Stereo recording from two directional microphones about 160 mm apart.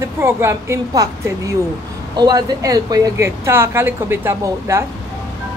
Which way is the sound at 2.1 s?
25° right (ahead or behind).